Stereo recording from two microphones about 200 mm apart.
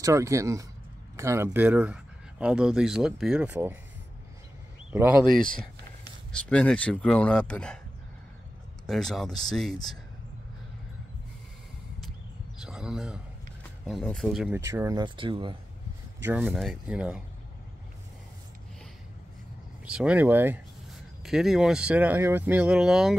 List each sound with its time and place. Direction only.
0.0 s speech: 15° right (ahead or behind)
4.9 s speech: 5° right (ahead or behind)
6.3 s speech: 5° left (ahead or behind)
8.8 s speech: centre (ahead or behind)
12.5 s speech: 5° right (ahead or behind)
14.7 s speech: 15° right (ahead or behind)
16.2 s speech: 10° right (ahead or behind)
19.8 s speech: 5° right (ahead or behind)